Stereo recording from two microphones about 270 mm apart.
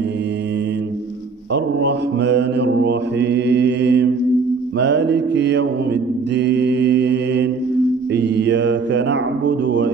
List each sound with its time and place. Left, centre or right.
1.5 s mantra: right